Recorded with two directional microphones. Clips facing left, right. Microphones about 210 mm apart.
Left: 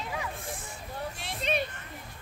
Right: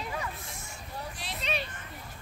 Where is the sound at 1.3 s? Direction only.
50° left (ahead or behind).